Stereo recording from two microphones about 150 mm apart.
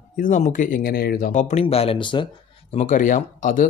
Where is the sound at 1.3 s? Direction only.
45° left (ahead or behind).